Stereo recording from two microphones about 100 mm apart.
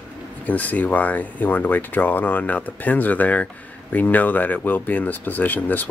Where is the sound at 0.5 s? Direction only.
15° left (ahead or behind).